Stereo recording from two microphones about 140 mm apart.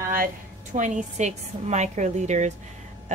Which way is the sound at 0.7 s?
60° right (ahead or behind).